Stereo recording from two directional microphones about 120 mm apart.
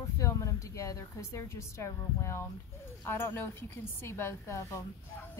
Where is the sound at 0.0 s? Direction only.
25° left (ahead or behind).